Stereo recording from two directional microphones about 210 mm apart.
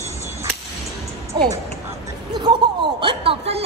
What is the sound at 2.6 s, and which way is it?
Chuckle, 20° right (ahead or behind).